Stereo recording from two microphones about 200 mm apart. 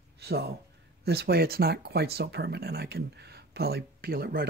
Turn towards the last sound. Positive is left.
turn(degrees=-50)  # may be behind; listen again after turning